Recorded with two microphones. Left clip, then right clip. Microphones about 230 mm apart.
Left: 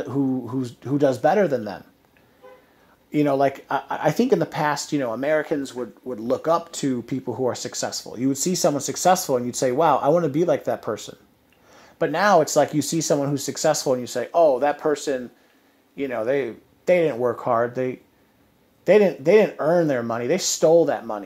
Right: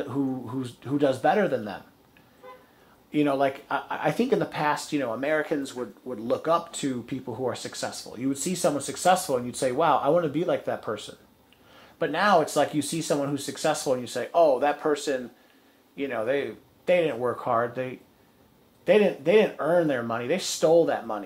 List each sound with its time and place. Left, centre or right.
0.0 s speech: left
3.1 s speech: left
12.0 s speech: left